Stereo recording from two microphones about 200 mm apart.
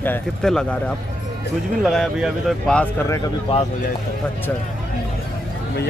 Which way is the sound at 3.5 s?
30° left (ahead or behind).